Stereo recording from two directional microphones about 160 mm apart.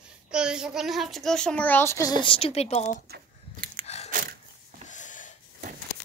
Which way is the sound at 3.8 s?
40° left (ahead or behind).